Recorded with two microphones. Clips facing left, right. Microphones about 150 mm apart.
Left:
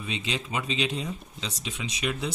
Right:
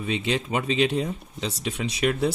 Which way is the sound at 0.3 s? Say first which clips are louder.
Right 5 dB; 55° right (ahead or behind).